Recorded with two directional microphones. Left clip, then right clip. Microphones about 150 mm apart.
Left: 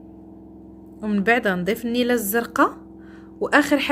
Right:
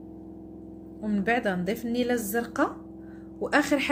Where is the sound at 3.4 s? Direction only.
35° left (ahead or behind).